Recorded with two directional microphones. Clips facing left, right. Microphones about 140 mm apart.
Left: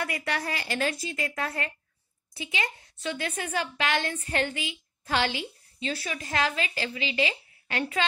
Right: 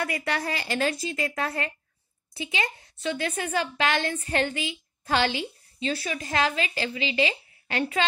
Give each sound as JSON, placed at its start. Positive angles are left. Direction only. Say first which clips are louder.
{"t": 0.0, "sound": "a woman's voice", "louder": "right 2 dB", "side_deg": -30}